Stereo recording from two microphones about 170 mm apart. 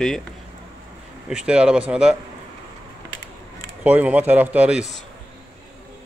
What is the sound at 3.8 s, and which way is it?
Speech, 10° right (ahead or behind).